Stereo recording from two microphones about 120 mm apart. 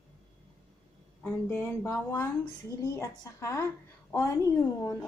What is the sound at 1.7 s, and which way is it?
Speech, 20° left (ahead or behind).